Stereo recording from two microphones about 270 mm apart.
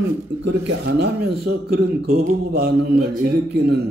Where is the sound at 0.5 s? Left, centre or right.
Right.